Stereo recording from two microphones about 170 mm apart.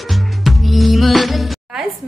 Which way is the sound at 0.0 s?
Centre (ahead or behind).